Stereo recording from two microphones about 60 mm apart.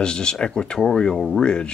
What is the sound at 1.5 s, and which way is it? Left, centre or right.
Speech, centre.